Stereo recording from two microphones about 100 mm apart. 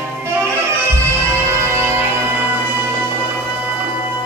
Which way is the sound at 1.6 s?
25° right (ahead or behind).